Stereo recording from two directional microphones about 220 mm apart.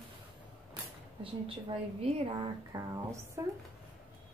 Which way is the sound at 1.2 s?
25° right (ahead or behind).